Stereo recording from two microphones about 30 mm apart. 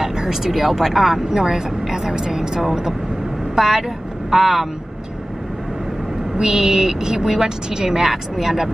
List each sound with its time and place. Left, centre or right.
0.0 s a sound: centre
0.4 s speech: centre
1.3 s speech: centre
6.3 s a woman's voice: right